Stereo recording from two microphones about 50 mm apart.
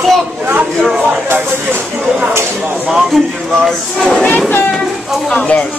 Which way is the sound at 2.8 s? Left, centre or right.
Centre.